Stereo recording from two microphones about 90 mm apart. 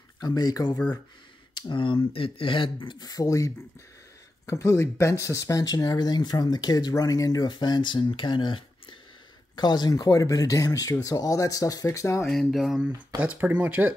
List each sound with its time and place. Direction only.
0.2 s speech: 45° left (ahead or behind)
1.5 s speech: 65° left (ahead or behind)
3.1 s speech: 40° left (ahead or behind)
12.3 s a sound: centre (ahead or behind)
13.2 s speech: 15° right (ahead or behind)